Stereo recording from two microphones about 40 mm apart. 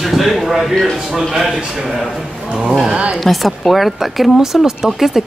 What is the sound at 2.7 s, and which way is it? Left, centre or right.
Speech, centre.